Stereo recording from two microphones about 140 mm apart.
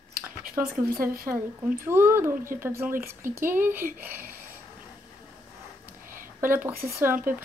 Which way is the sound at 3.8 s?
90° right.